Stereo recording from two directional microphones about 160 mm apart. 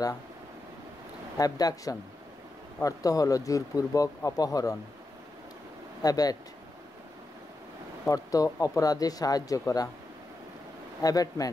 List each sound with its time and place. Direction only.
1.4 s speech: 25° left (ahead or behind)
6.0 s speech: 25° left (ahead or behind)
8.1 s speech: 20° left (ahead or behind)
11.0 s speech: 20° left (ahead or behind)